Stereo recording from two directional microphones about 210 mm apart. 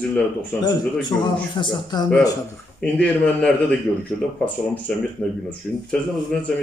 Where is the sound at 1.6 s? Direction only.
20° left (ahead or behind).